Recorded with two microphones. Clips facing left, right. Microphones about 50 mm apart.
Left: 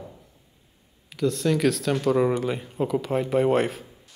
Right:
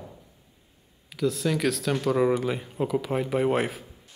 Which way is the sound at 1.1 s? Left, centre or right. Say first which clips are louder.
Left 2 dB; centre.